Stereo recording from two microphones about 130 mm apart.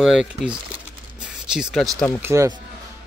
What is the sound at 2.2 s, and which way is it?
Speech, 20° right (ahead or behind).